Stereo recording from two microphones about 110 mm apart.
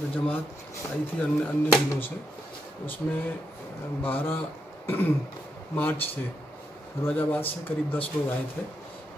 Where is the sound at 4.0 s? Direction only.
20° left (ahead or behind).